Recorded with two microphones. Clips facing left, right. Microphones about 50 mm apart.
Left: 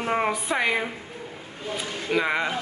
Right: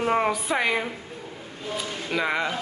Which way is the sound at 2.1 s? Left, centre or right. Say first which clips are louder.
Left 1 dB; centre.